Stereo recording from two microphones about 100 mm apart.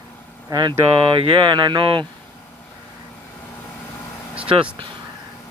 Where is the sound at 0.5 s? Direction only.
45° right (ahead or behind).